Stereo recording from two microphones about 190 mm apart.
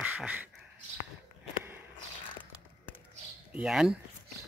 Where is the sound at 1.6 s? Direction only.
10° right (ahead or behind).